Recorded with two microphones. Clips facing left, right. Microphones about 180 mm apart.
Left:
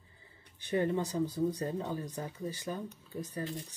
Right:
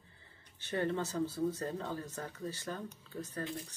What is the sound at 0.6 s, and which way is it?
Speech, 15° left (ahead or behind).